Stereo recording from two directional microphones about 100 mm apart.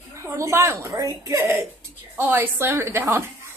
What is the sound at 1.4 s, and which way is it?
A woman's voice, 25° right (ahead or behind).